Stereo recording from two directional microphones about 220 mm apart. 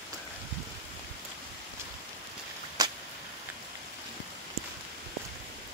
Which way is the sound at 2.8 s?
15° right (ahead or behind).